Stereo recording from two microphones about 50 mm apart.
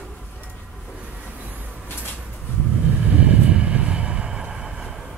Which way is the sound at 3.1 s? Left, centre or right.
Right.